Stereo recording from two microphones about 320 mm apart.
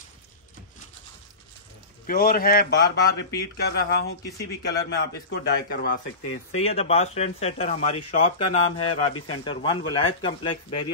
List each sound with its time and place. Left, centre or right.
2.0 s a man's voice: left
6.5 s a man's voice: centre
8.7 s speech: left
9.3 s speech: centre